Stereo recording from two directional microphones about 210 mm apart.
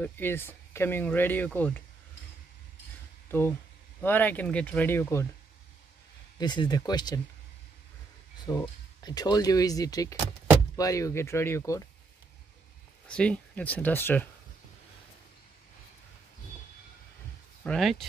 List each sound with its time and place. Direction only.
0.0 s speech: 10° left (ahead or behind)
3.3 s speech: 10° left (ahead or behind)
6.3 s speech: 20° left (ahead or behind)
8.5 s speech: 15° left (ahead or behind)
13.1 s speech: 5° left (ahead or behind)
17.6 s speech: centre (ahead or behind)